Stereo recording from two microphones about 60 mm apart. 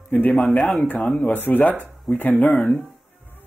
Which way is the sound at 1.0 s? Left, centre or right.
Centre.